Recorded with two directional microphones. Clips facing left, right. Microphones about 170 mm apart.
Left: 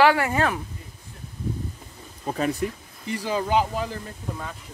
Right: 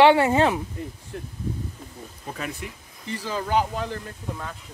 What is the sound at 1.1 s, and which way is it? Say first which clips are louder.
Speech: right 10 dB; 70° right (ahead or behind).